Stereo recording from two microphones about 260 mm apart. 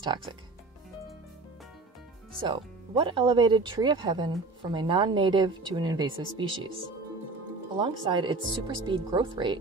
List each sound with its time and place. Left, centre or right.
0.0 s speech: centre
2.4 s speech: centre
7.8 s speech: centre